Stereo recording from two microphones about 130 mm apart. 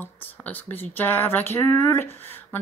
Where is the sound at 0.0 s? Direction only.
15° left (ahead or behind).